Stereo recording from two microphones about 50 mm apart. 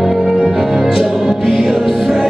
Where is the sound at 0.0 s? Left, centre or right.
Centre.